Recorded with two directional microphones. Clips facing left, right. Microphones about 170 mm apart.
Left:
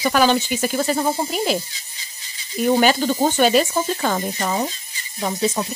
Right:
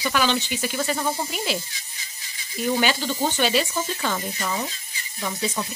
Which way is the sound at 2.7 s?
45° left (ahead or behind).